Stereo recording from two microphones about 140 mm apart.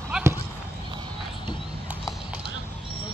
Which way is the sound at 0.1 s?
5° right (ahead or behind).